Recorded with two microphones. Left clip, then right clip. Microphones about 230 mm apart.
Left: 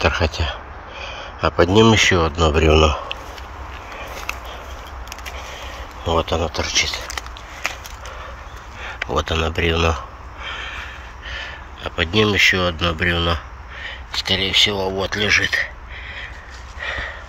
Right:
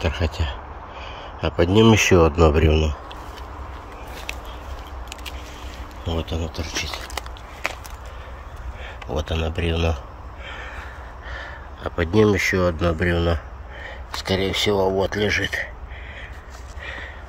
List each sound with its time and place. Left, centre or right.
0.0 s a sound: centre
2.0 s speech: right
2.5 s a man's voice: centre
6.0 s speech: centre
8.8 s a sound: centre
14.4 s speech: right
16.8 s sniff: centre